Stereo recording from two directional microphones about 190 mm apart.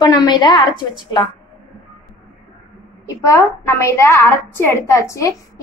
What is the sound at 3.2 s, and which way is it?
A woman's voice, 15° left (ahead or behind).